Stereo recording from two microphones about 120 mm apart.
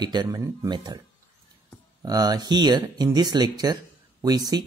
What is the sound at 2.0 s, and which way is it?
Speech, 30° right (ahead or behind).